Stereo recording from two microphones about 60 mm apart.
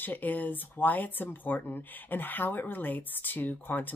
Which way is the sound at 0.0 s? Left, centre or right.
Left.